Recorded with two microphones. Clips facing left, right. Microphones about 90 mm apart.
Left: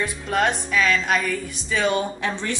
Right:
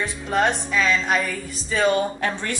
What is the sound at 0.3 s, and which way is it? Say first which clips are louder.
Speech: right 1 dB; centre (ahead or behind).